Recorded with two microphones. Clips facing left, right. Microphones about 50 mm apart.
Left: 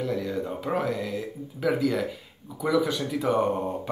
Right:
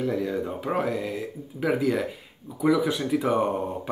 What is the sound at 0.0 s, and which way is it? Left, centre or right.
Speech, centre.